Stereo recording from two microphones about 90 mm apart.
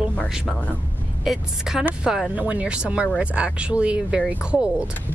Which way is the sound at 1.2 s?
5° right (ahead or behind).